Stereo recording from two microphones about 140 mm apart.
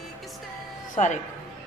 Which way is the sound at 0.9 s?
60° left (ahead or behind).